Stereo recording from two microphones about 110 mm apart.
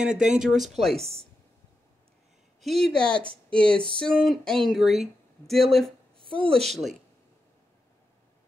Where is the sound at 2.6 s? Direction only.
5° left (ahead or behind).